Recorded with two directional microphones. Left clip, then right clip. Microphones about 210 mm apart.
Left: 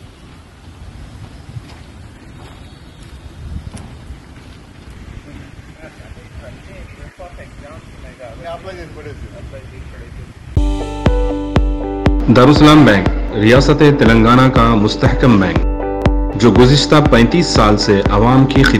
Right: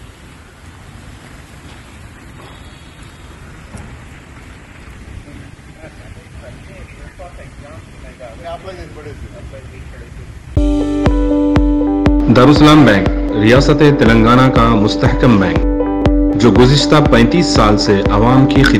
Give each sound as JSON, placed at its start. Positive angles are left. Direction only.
{"t": 8.5, "sound": "speech", "side_deg": 20}
{"t": 11.1, "sound": "speech", "side_deg": 0}